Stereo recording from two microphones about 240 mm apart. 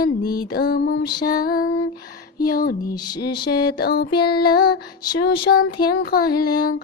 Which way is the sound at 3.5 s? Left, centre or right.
Left.